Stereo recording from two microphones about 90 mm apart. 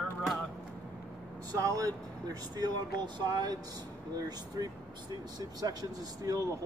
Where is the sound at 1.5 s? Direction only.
40° right (ahead or behind).